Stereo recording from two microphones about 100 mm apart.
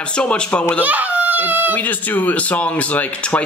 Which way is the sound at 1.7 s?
20° left (ahead or behind).